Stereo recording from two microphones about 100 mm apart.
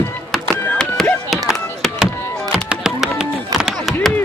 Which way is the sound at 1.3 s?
Centre (ahead or behind).